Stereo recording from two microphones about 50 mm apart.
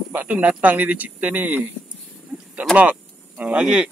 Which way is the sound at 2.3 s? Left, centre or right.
Right.